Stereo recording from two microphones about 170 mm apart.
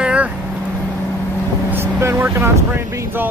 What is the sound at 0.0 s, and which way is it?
Vehicle, 5° right (ahead or behind).